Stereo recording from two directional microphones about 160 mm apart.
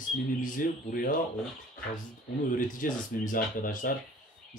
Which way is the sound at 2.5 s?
60° left (ahead or behind).